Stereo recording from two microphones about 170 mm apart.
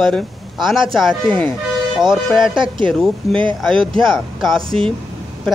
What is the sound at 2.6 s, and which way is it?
Speech, 30° right (ahead or behind).